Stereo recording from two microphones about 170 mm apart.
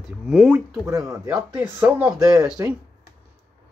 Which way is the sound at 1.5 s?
10° right (ahead or behind).